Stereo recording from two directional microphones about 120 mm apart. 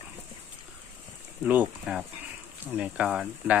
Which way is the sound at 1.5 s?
10° right (ahead or behind).